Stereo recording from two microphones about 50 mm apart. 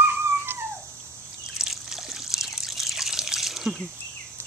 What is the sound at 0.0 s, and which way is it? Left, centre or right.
Dog, right.